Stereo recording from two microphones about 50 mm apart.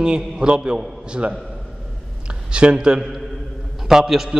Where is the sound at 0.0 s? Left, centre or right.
Centre.